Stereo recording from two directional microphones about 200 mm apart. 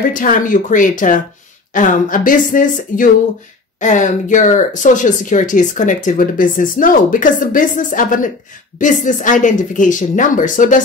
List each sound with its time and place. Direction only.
0.1 s speech: 40° left (ahead or behind)